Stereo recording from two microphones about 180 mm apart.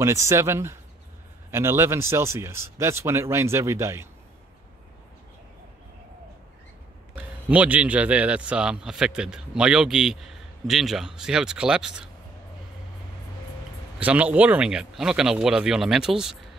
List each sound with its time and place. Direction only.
0.0 s speech: 15° right (ahead or behind)
7.2 s speech: 10° right (ahead or behind)
13.9 s speech: 10° right (ahead or behind)